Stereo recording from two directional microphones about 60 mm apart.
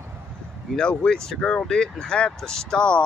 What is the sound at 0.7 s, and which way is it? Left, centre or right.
Speech, centre.